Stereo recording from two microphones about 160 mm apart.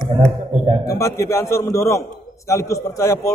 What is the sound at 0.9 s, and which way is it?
A man's voice, 20° left (ahead or behind).